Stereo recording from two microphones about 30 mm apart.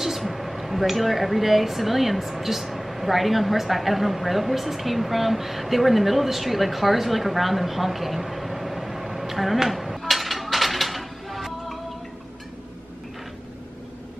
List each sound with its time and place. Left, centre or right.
0.0 s speech: centre